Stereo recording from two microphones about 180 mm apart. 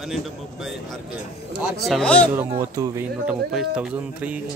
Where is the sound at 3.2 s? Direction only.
5° right (ahead or behind).